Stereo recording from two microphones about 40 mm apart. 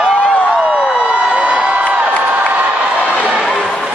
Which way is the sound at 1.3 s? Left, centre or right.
Right.